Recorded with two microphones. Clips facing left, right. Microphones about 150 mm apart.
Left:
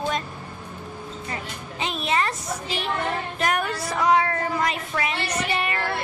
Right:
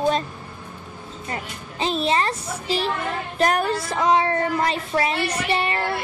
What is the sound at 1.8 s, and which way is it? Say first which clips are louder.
A woman's voice: right 4 dB; 30° right (ahead or behind).